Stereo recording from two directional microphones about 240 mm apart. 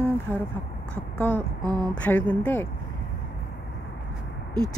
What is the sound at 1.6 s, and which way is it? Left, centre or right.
Speech, centre.